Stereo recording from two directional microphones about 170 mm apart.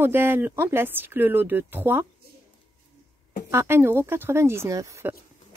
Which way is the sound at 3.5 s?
15° right (ahead or behind).